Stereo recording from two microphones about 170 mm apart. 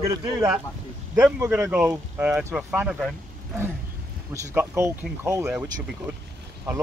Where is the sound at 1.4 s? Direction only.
10° right (ahead or behind).